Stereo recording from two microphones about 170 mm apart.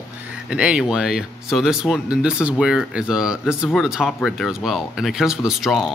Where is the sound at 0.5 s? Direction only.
5° right (ahead or behind).